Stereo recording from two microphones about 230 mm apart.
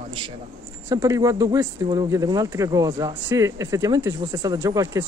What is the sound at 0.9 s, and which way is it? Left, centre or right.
Speech, centre.